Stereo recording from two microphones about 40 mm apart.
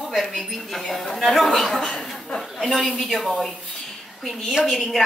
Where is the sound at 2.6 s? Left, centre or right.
Left.